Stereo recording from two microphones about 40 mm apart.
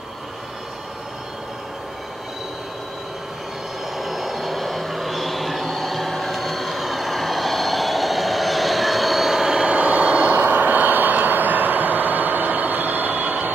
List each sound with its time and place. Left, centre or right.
4.0 s train: centre
9.7 s vehicle: right
10.3 s vehicle: right